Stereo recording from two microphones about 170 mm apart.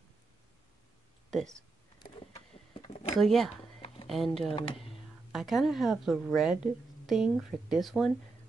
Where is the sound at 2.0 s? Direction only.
30° left (ahead or behind).